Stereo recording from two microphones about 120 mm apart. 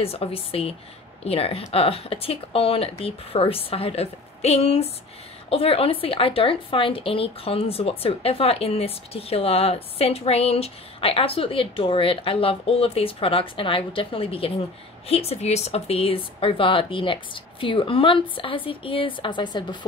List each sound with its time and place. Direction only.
0.0 s a woman's voice: 55° left (ahead or behind); by 19.9 s 40° left (ahead or behind)